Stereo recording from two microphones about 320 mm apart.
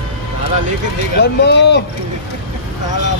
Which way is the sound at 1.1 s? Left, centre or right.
Left.